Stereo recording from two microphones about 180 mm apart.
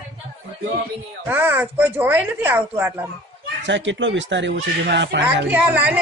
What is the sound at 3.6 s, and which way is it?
A woman's voice, 90° right.